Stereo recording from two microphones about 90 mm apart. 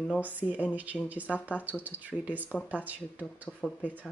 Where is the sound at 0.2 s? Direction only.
20° right (ahead or behind).